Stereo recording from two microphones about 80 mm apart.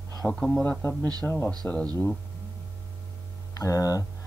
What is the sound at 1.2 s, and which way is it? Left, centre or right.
Speech, left.